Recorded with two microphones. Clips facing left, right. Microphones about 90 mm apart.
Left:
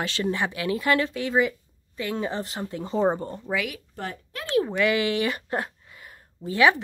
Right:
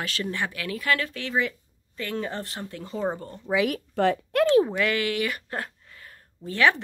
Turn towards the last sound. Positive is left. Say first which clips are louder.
# left 2 dB
turn(degrees=10)  # may be behind; listen again after turning